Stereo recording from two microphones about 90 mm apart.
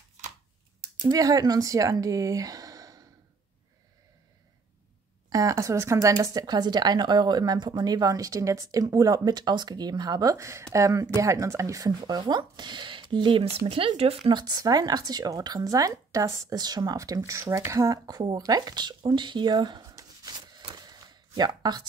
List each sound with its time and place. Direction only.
1.0 s speech: 40° right (ahead or behind)
5.3 s speech: 40° right (ahead or behind)
10.3 s speech: 35° right (ahead or behind); by 14.4 s 85° right
14.4 s speech: 45° right (ahead or behind)
16.5 s speech: 50° right (ahead or behind)
17.3 s speech: 30° right (ahead or behind); by 20.6 s 50° right (ahead or behind)
20.7 s a sound: 50° right (ahead or behind)